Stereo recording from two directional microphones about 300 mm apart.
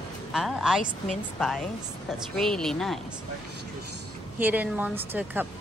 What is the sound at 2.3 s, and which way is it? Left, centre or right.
Speech, centre.